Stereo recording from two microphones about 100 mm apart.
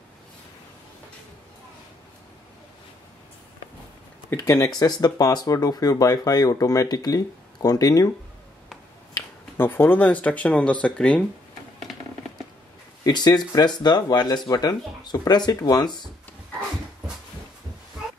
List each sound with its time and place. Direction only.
4.3 s speech: 30° left (ahead or behind)
9.6 s speech: 20° left (ahead or behind)
13.0 s speech: 45° left (ahead or behind)